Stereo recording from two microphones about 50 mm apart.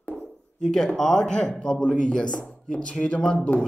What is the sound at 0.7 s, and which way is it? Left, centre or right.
Speech, centre.